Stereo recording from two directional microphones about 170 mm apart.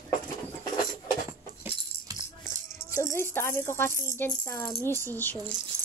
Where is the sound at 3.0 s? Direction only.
15° left (ahead or behind).